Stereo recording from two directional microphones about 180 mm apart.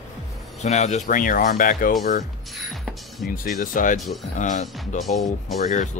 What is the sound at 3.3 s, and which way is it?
Speech, 50° left (ahead or behind).